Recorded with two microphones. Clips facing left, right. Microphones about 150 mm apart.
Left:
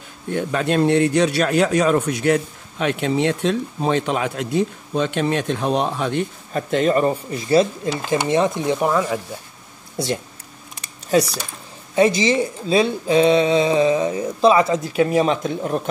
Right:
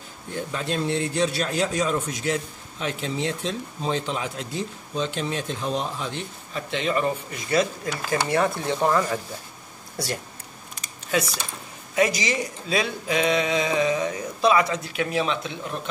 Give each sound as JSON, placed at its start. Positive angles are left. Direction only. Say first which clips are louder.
{"t": 0.3, "sound": "speech", "louder": "left 8 dB", "side_deg": 65}
{"t": 9.9, "sound": "speech", "louder": "left 7 dB", "side_deg": 20}
{"t": 11.1, "sound": "speech", "louder": "left 7 dB", "side_deg": 35}